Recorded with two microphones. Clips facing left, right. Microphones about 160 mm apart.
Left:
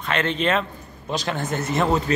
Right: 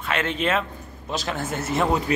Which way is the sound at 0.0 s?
5° right (ahead or behind).